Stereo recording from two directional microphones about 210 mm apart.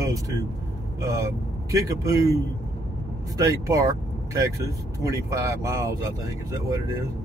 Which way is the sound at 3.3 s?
15° right (ahead or behind).